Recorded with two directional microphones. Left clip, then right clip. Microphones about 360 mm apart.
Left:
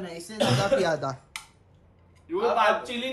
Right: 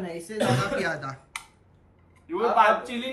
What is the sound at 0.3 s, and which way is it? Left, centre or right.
A man's voice, centre.